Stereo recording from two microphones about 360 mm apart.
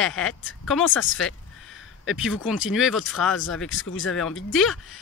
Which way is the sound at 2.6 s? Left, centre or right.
Centre.